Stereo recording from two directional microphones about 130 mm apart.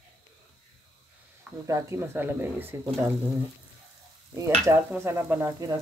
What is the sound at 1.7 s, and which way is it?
Speech, 20° right (ahead or behind).